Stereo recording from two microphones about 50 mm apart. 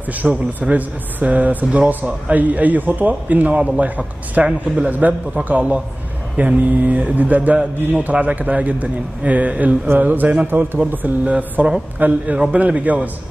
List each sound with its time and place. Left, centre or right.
0.1 s a man's voice: right
12.0 s a man's voice: right